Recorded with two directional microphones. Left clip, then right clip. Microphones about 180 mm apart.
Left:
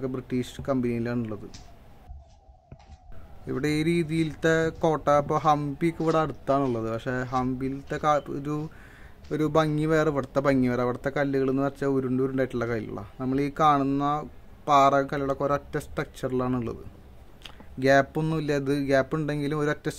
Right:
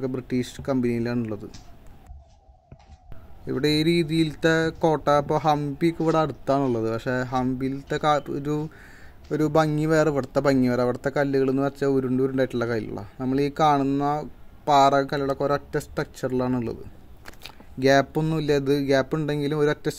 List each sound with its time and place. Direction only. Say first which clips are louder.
0.0 s speech: right 3 dB; 20° right (ahead or behind)
3.4 s speech: right 4 dB; 20° right (ahead or behind)